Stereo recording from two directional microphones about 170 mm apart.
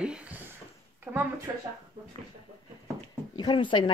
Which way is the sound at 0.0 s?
5° right (ahead or behind).